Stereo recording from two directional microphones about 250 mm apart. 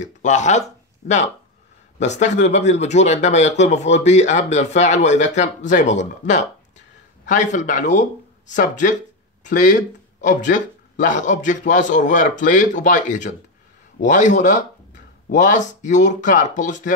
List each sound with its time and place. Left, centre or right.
0.0 s a man's voice: left